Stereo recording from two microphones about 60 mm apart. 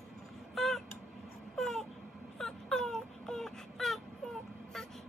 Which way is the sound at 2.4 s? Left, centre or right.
Centre.